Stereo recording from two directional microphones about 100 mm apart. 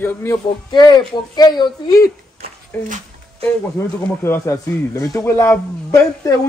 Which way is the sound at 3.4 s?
25° left (ahead or behind).